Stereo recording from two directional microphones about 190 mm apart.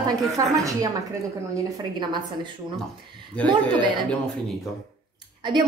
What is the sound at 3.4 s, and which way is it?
Speech, 5° left (ahead or behind).